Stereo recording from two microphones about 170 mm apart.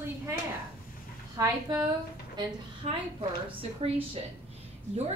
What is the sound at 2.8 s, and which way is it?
Speech, 35° right (ahead or behind).